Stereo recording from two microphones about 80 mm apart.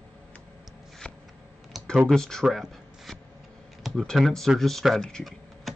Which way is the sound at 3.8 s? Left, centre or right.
Centre.